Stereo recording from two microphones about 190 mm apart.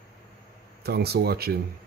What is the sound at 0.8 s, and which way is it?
Speech, 55° right (ahead or behind).